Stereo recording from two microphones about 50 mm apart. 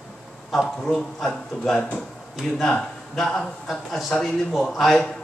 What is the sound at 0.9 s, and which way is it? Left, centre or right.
Speech, centre.